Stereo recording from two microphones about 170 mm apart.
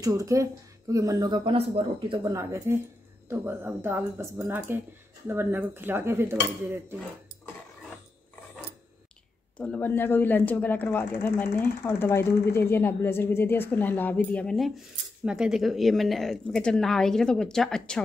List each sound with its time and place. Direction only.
0.0 s speech: 20° right (ahead or behind)
2.2 s speech: 15° right (ahead or behind)
9.6 s speech: 10° left (ahead or behind)